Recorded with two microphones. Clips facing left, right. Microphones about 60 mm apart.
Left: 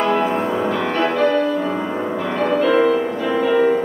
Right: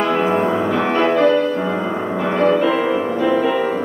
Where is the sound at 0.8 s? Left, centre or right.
Right.